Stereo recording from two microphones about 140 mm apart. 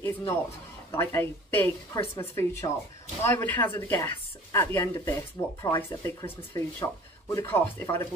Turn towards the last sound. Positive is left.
turn(degrees=15)  # may be behind; listen again after turning